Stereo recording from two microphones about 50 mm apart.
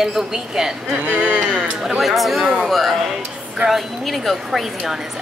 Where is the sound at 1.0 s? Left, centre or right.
Right.